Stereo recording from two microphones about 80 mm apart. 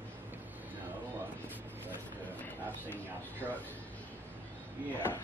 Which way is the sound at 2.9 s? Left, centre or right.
Left.